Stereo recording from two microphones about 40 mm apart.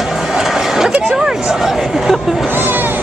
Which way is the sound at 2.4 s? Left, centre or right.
Right.